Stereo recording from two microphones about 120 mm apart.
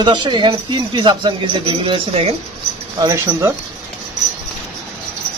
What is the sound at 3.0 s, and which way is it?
Speech, 30° right (ahead or behind).